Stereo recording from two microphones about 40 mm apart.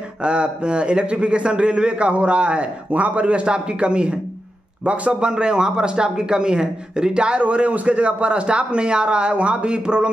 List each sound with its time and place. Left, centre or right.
0.2 s a man's voice: right
5.2 s a man's voice: right